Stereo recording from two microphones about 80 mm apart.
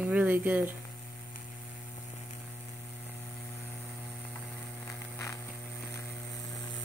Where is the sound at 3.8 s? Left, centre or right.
Centre.